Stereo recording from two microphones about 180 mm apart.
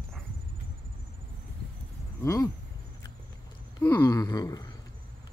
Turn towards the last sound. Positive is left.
turn(degrees=20)  # may be behind; listen again after turning